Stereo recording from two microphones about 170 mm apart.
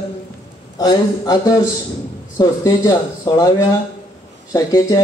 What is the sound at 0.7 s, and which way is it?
A man's voice, 25° left (ahead or behind).